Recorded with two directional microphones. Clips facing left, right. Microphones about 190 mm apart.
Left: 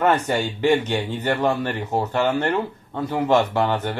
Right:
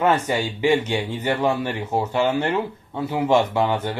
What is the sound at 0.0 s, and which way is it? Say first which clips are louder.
Speech: even; 10° right (ahead or behind).